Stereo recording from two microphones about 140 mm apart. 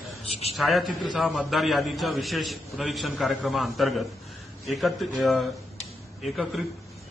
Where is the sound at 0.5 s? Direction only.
Centre (ahead or behind).